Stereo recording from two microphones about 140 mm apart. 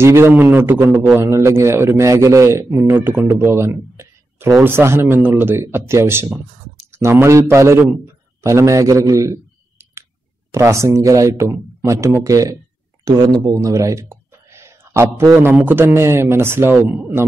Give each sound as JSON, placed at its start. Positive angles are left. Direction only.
{"t": 0.0, "sound": "a man's voice", "side_deg": -20}
{"t": 8.4, "sound": "a sound", "side_deg": -20}
{"t": 10.5, "sound": "a man's voice", "side_deg": -20}